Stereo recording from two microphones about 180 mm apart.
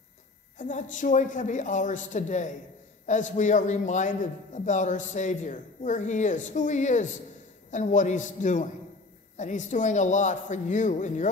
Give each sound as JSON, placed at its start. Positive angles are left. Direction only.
{"t": 0.6, "sound": "a man's voice", "side_deg": 45}